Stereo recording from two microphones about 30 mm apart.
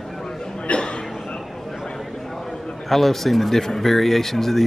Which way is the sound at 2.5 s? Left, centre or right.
Centre.